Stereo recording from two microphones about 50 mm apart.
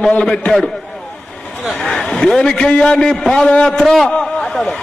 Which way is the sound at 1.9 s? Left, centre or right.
Centre.